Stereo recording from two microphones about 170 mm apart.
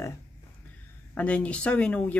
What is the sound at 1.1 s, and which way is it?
Speech, 5° left (ahead or behind).